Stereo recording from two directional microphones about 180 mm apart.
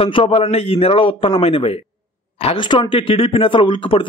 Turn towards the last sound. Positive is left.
turn(degrees=30)  # may be behind; listen again after turning